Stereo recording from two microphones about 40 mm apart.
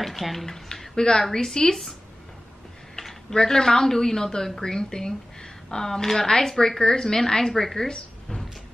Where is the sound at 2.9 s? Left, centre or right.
Centre.